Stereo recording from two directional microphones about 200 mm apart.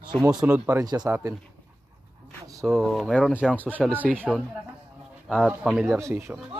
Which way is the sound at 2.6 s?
Centre (ahead or behind).